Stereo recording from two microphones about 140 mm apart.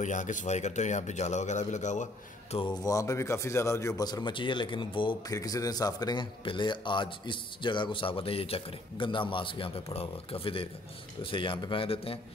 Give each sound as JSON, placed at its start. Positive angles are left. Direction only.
{"t": 0.0, "sound": "a man's voice", "side_deg": 65}
{"t": 2.8, "sound": "speech", "side_deg": 25}